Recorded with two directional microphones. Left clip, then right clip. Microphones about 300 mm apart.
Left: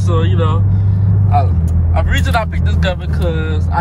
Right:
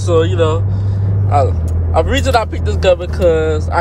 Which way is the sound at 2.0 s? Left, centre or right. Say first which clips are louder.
Right 5 dB; centre.